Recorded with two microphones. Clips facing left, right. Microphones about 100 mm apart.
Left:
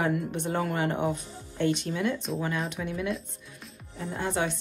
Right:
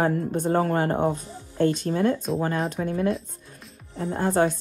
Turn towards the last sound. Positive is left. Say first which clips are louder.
# right 7 dB
turn(degrees=-40)  # may be behind; listen again after turning